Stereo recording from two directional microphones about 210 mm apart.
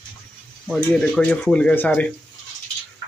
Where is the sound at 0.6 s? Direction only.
5° left (ahead or behind).